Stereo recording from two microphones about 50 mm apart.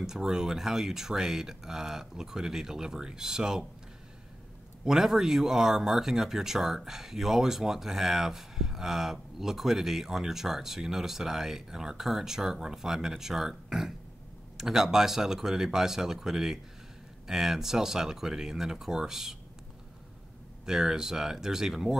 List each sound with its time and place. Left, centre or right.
0.0 s speech: centre
4.8 s speech: centre
20.6 s speech: centre